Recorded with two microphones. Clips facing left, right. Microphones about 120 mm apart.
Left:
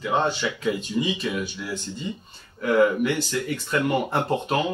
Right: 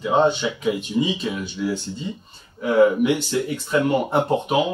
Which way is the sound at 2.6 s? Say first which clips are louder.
Right 3 dB; 25° right (ahead or behind).